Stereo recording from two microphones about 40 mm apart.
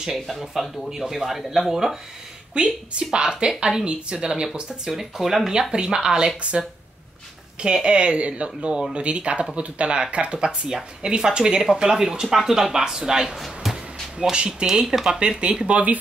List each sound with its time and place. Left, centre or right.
0.1 s speech: centre
2.5 s a woman's voice: right
4.8 s speech: centre
5.5 s a woman's voice: right
7.6 s a woman's voice: right
14.3 s a woman's voice: right
14.7 s speech: centre
15.1 s a woman's voice: right